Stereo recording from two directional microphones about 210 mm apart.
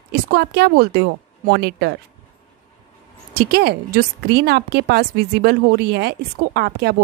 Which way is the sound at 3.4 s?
50° right (ahead or behind).